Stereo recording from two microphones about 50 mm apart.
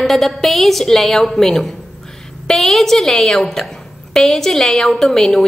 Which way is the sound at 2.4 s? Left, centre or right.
Centre.